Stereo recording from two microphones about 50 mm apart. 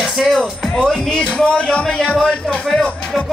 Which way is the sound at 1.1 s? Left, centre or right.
Left.